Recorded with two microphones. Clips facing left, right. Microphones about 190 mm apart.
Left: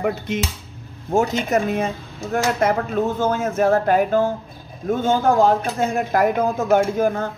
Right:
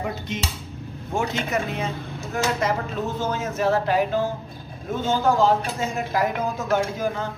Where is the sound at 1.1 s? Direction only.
45° left (ahead or behind).